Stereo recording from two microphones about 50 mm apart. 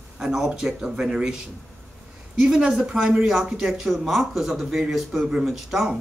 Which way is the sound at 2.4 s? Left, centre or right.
Centre.